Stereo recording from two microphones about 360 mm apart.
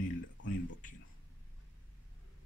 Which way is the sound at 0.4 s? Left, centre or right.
Left.